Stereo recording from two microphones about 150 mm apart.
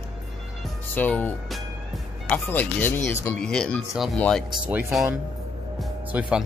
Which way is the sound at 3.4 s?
5° left (ahead or behind).